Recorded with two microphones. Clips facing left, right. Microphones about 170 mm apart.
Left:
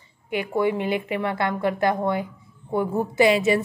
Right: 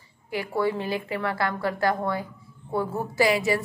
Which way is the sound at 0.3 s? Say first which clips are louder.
Left 3 dB; 20° left (ahead or behind).